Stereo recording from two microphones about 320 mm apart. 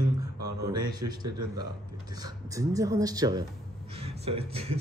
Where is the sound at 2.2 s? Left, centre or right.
Centre.